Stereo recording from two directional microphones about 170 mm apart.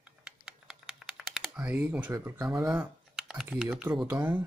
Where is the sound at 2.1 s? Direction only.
15° right (ahead or behind).